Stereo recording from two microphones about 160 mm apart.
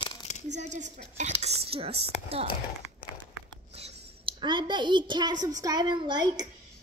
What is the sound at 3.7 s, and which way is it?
Speech, 35° right (ahead or behind).